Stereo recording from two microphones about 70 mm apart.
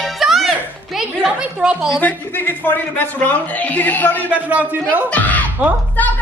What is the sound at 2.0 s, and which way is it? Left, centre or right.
A man's voice, left.